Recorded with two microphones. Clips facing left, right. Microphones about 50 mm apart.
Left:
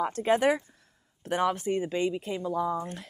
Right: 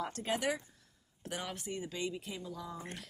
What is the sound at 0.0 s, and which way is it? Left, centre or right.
A woman's voice, left.